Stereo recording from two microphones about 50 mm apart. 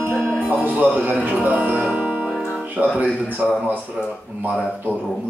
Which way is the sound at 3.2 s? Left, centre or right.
Right.